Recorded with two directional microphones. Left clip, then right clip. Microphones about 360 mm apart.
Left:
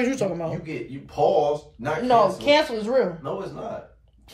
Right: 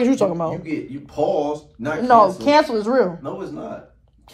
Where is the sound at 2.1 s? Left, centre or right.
Centre.